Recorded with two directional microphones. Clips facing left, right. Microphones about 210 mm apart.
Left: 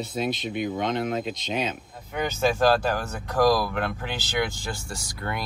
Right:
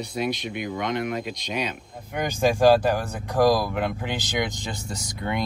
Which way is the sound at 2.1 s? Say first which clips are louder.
Right 2 dB; 15° right (ahead or behind).